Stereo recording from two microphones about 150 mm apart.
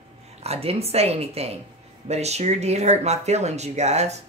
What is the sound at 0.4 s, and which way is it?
Speech, 45° right (ahead or behind).